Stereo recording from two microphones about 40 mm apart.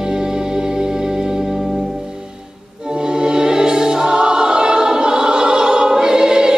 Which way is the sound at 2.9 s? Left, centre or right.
Centre.